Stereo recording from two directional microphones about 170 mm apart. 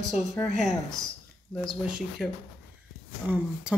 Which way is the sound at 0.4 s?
Centre (ahead or behind).